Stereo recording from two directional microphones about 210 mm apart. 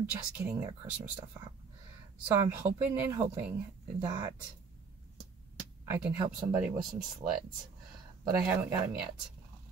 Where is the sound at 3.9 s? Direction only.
20° right (ahead or behind).